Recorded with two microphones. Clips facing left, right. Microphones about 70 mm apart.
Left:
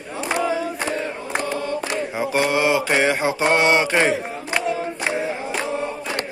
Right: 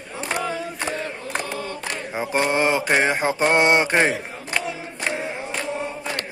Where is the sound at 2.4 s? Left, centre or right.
Right.